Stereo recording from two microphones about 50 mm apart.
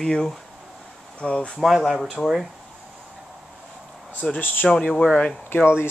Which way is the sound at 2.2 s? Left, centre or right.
Centre.